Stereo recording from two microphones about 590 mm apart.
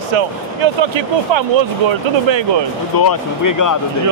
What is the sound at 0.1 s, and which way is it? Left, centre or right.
Speech, right.